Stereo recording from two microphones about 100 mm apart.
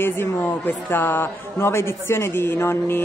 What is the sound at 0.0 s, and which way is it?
Speech, 20° left (ahead or behind).